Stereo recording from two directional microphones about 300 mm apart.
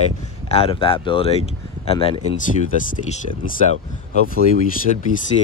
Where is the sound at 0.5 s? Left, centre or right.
Centre.